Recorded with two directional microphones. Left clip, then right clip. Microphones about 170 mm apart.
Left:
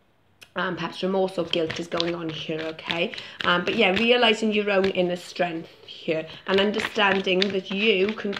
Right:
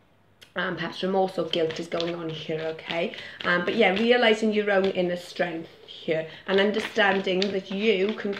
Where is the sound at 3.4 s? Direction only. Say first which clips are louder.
Left 1 dB; 35° left (ahead or behind).